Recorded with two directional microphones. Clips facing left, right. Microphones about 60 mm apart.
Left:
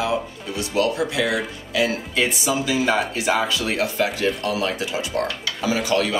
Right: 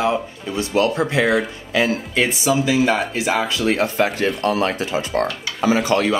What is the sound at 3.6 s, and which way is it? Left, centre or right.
Speech, right.